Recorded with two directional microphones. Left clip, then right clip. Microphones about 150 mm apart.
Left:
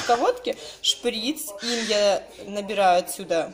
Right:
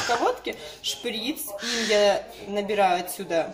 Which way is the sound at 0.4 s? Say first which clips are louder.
Left 4 dB; 50° left (ahead or behind).